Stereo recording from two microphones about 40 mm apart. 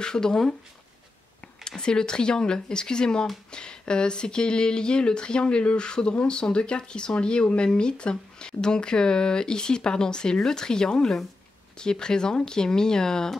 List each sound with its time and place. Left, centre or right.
0.0 s speech: centre
1.8 s speech: centre